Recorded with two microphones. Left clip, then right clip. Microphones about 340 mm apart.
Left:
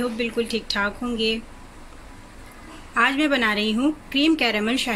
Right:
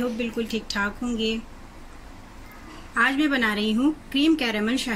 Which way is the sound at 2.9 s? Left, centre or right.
Centre.